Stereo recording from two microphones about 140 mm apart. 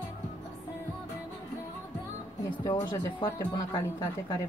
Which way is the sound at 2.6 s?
25° left (ahead or behind).